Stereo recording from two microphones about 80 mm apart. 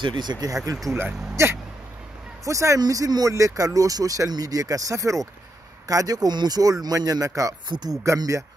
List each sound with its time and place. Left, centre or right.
0.0 s speech: right
0.9 s speech: right
2.8 s speech: right